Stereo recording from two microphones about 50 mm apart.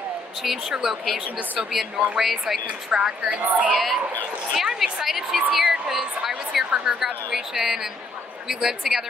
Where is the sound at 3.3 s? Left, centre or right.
Right.